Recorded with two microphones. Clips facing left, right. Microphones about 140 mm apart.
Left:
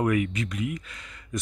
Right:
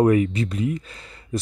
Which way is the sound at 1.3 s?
30° right (ahead or behind).